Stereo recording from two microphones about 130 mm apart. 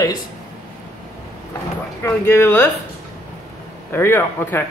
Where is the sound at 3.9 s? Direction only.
20° left (ahead or behind).